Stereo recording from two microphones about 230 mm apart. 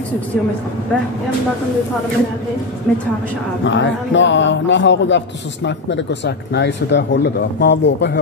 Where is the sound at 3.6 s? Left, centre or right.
Left.